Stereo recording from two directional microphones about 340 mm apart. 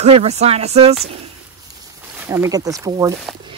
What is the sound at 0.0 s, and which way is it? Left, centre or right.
Speech, centre.